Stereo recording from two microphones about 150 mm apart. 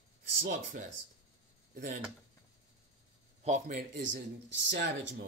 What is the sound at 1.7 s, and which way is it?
Speech, 65° right (ahead or behind).